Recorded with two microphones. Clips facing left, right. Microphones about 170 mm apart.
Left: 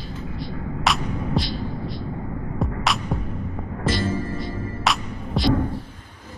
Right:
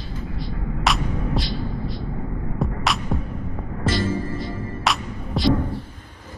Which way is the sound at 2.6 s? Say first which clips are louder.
Even; centre (ahead or behind).